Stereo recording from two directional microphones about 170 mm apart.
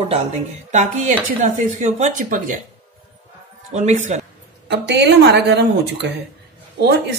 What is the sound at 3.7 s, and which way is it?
Speech, 45° right (ahead or behind).